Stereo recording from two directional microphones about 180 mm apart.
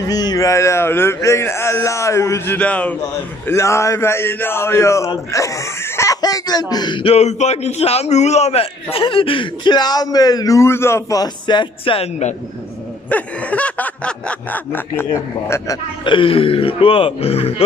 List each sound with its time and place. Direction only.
0.0 s speech: 20° left (ahead or behind); by 12.4 s 35° left (ahead or behind)
13.1 s speech: 5° left (ahead or behind); by 17.5 s 35° left (ahead or behind)